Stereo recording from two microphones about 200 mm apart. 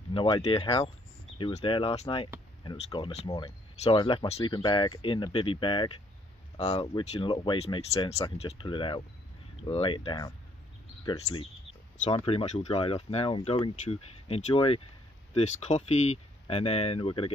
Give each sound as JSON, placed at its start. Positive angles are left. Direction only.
{"t": 0.1, "sound": "speech", "side_deg": 25}